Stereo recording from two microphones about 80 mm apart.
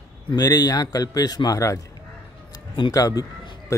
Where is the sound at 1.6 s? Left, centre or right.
Left.